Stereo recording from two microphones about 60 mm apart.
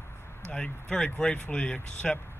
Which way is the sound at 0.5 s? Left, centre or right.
Centre.